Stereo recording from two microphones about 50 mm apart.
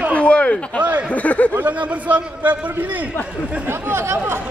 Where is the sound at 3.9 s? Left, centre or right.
Right.